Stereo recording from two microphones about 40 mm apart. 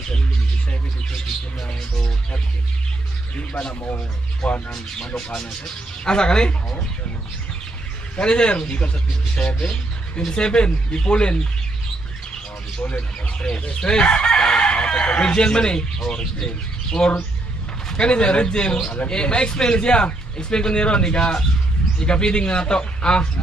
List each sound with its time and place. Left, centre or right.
3.3 s speech: left
4.9 s speech: centre
6.0 s speech: left
8.2 s speech: left
13.7 s speech: left